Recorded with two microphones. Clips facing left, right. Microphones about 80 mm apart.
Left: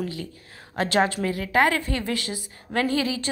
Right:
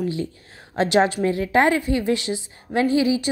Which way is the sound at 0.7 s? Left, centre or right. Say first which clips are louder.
Right 4 dB; right.